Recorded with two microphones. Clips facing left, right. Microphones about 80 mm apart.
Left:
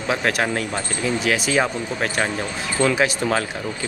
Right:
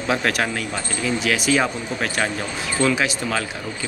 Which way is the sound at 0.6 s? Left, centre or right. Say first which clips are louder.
Left 2 dB; left.